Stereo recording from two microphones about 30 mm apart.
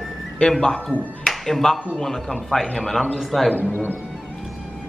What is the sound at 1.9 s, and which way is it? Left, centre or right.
A woman's voice, centre.